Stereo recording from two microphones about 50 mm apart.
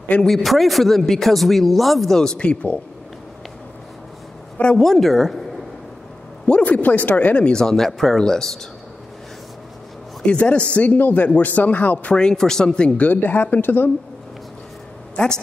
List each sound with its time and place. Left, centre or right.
0.2 s speech: centre; by 2.8 s left
4.7 s speech: centre
6.6 s speech: left
7.5 s speech: centre
10.2 s speech: left
12.2 s speech: centre
13.1 s speech: left
15.2 s a woman's voice: left